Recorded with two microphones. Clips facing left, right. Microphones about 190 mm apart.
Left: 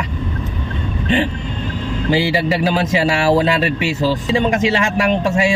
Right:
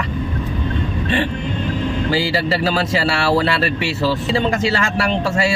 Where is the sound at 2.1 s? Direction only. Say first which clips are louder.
Left 5 dB; 15° left (ahead or behind).